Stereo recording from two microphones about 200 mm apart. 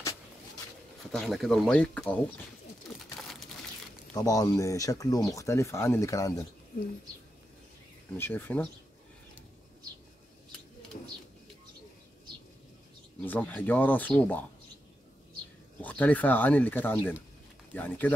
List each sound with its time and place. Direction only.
1.1 s speech: centre (ahead or behind)
3.2 s a sound: centre (ahead or behind)
4.1 s speech: 20° left (ahead or behind)
8.2 s speech: 10° left (ahead or behind)
13.2 s speech: 10° left (ahead or behind)
15.8 s speech: 10° left (ahead or behind)